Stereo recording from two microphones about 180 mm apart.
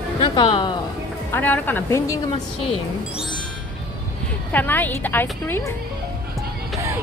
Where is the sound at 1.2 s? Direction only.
10° left (ahead or behind).